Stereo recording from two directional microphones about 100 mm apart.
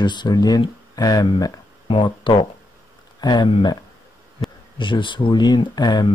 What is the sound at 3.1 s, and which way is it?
Speech, 45° left (ahead or behind).